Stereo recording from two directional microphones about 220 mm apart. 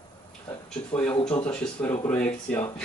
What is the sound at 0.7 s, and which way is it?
Speech, 5° left (ahead or behind).